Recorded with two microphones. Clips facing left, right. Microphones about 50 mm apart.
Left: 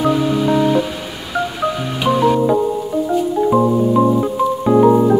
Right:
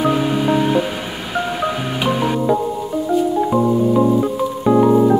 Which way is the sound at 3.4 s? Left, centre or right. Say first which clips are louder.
Left 2 dB; centre.